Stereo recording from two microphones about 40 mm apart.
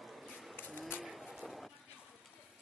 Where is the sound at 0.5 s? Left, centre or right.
Left.